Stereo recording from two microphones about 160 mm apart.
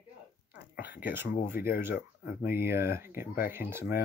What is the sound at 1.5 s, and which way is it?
Speech, 70° left (ahead or behind).